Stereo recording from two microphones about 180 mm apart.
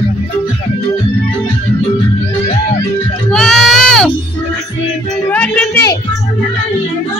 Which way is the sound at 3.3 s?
Centre (ahead or behind).